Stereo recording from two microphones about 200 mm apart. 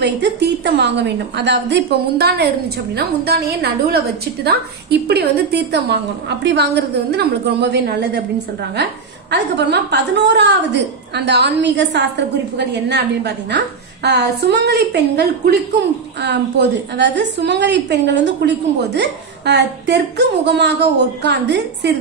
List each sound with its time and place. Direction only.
0.0 s a woman's voice: 60° right (ahead or behind)
9.3 s a woman's voice: 60° right (ahead or behind)